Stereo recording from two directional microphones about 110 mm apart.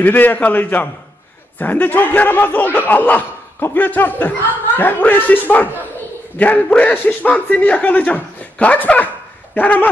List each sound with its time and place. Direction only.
0.0 s a man's voice: 15° left (ahead or behind)